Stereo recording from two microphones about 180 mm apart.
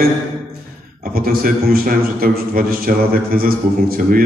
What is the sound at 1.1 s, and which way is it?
A man's voice, 55° right (ahead or behind).